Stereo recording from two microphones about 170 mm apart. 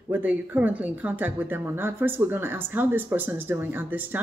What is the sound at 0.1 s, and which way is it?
Speech, 10° right (ahead or behind).